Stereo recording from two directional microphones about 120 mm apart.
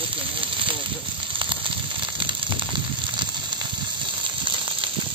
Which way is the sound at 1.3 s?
45° right (ahead or behind).